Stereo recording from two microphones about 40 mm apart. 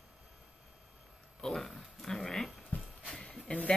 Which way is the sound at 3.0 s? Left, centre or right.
Left.